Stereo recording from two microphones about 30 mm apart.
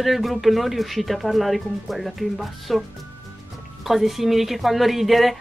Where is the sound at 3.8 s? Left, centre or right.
Centre.